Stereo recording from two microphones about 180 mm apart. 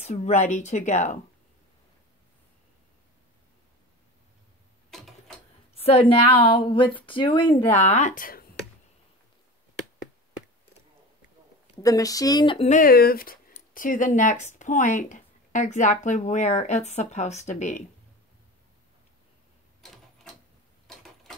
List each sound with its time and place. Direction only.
0.0 s speech: 40° left (ahead or behind)
5.8 s a woman's voice: 30° left (ahead or behind); by 8.5 s 50° left (ahead or behind)
11.8 s a woman's voice: 20° left (ahead or behind)
12.6 s speech: 45° left (ahead or behind)
19.8 s a sound: centre (ahead or behind)